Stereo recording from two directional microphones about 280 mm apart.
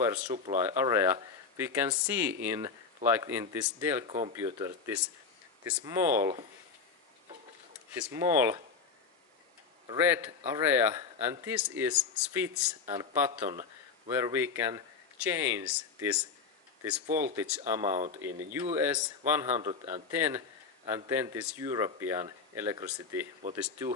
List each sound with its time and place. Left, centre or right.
0.0 s a man's voice: centre
7.9 s a man's voice: centre
9.8 s a man's voice: centre
17.7 s speech: right
18.8 s a man's voice: centre
20.1 s a man's voice: centre